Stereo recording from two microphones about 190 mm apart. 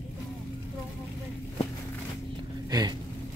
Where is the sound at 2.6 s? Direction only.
20° right (ahead or behind).